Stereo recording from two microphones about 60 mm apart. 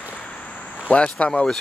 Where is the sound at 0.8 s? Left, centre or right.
Centre.